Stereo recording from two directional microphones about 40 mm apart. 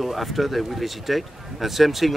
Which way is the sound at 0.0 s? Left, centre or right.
Centre.